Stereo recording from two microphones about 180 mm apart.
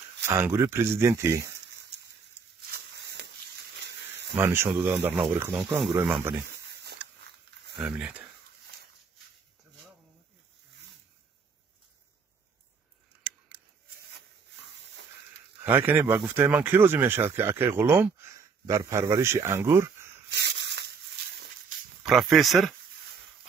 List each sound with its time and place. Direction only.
0.3 s speech: 15° right (ahead or behind)
2.7 s a sound: 65° right (ahead or behind)
4.4 s speech: 15° right (ahead or behind)
7.8 s speech: 5° right (ahead or behind)
15.6 s speech: 10° right (ahead or behind)
20.2 s a sound: 70° right (ahead or behind)
22.0 s speech: centre (ahead or behind)